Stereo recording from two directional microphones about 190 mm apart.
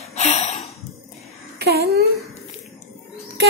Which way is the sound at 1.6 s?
55° right (ahead or behind).